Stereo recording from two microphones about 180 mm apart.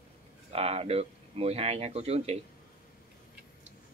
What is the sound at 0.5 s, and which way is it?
Speech, 35° right (ahead or behind).